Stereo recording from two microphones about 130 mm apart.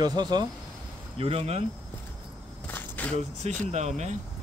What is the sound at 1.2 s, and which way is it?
Speech, 50° right (ahead or behind).